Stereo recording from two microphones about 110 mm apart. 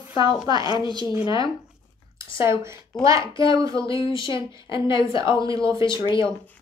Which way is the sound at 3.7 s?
50° left (ahead or behind).